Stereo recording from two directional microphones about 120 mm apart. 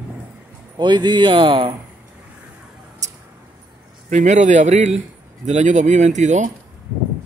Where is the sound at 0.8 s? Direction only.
40° right (ahead or behind).